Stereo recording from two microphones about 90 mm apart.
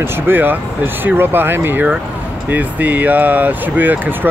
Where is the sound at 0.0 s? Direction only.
25° right (ahead or behind).